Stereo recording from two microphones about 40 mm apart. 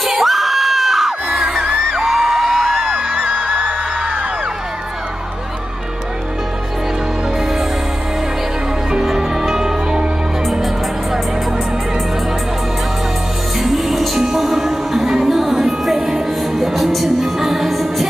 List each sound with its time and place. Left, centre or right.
0.1 s crowd: centre
1.6 s music: right
2.0 s music: centre
2.9 s music: right
9.0 s music: centre
13.6 s music: centre